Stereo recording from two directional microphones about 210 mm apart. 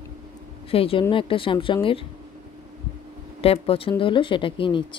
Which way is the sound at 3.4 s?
25° left (ahead or behind).